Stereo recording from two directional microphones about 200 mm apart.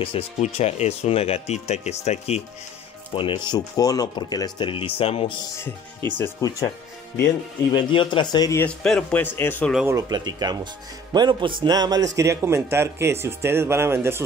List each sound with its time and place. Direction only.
0.0 s speech: 30° left (ahead or behind)
6.1 s a man's voice: 10° left (ahead or behind)
7.7 s a man's voice: 25° left (ahead or behind); by 9.8 s 10° left (ahead or behind)
9.9 s a man's voice: 20° right (ahead or behind)